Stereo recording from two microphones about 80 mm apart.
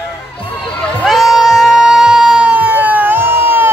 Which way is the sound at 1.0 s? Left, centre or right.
Centre.